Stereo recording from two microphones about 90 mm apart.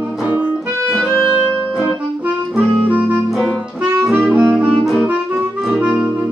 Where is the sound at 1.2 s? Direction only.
15° right (ahead or behind).